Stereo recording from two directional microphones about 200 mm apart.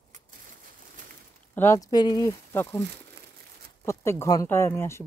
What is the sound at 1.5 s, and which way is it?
Speech, 15° left (ahead or behind).